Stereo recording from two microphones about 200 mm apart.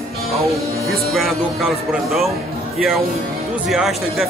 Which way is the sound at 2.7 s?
Centre (ahead or behind).